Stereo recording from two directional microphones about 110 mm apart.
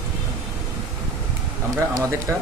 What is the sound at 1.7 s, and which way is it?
Speech, 30° right (ahead or behind).